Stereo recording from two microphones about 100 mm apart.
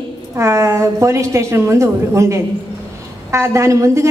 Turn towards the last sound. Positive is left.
turn(degrees=-30)  # may be behind; listen again after turning